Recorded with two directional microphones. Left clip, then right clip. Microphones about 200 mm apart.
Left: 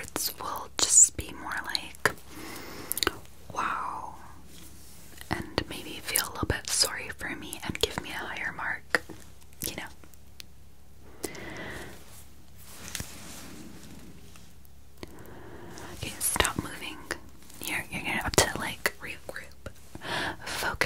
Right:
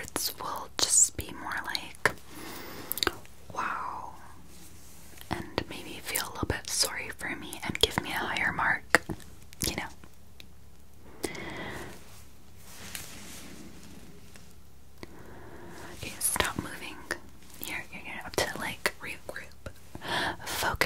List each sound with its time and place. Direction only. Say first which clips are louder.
0.0 s whispering: even; 10° left (ahead or behind)
8.0 s whispering: right 4 dB; 10° right (ahead or behind)
11.2 s a sound: right 1 dB; centre (ahead or behind)
15.0 s whispering: left 2 dB; 15° left (ahead or behind)
17.9 s whispering: left 8 dB; 55° left (ahead or behind)
18.6 s whispering: left 1 dB; 20° left (ahead or behind)